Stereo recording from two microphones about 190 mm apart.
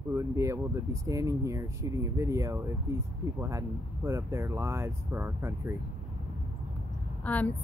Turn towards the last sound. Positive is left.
turn(degrees=10)  # may be behind; listen again after turning